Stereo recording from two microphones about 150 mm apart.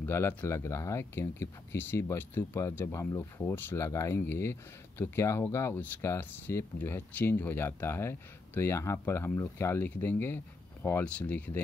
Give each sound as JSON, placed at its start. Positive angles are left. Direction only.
{"t": 0.0, "sound": "speech", "side_deg": 15}